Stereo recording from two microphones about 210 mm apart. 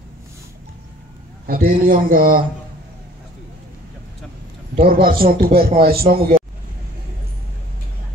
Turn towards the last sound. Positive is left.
turn(degrees=-45)  # may be behind; listen again after turning